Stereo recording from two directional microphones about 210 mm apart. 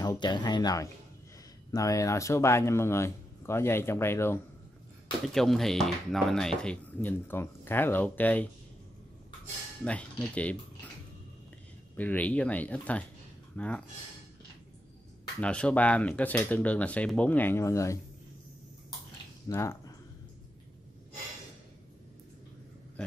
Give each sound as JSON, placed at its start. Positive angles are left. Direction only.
{"t": 0.0, "sound": "speech", "side_deg": 20}
{"t": 5.2, "sound": "speech", "side_deg": 0}
{"t": 9.8, "sound": "speech", "side_deg": 5}
{"t": 12.0, "sound": "speech", "side_deg": 5}
{"t": 15.4, "sound": "speech", "side_deg": 5}
{"t": 19.5, "sound": "speech", "side_deg": 10}